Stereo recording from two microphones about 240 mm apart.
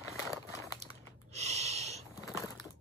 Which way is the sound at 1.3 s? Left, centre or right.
Right.